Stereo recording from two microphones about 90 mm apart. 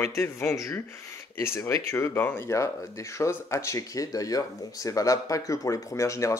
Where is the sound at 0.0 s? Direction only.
30° left (ahead or behind).